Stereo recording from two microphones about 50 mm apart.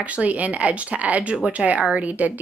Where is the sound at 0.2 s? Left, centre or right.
Right.